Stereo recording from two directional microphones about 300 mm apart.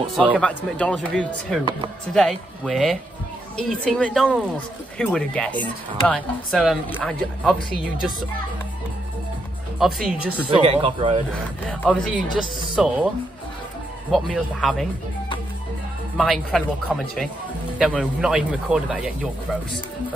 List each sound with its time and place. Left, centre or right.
0.2 s speech: centre
9.8 s speech: centre
10.6 s speech: centre
11.7 s speech: centre
14.1 s speech: centre
16.2 s speech: centre